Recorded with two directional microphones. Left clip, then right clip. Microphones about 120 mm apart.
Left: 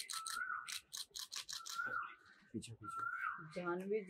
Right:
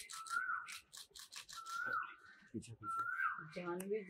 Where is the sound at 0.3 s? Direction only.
40° left (ahead or behind).